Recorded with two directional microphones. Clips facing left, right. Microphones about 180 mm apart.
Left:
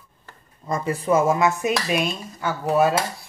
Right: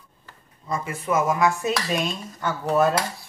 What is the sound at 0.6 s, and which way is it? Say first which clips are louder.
Dishes: left 4 dB; 40° left (ahead or behind).